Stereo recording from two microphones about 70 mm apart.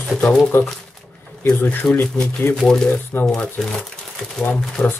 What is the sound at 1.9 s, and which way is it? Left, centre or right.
Speech, left.